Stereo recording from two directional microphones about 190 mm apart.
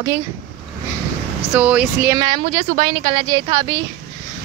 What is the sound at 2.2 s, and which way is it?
Speech, 30° right (ahead or behind).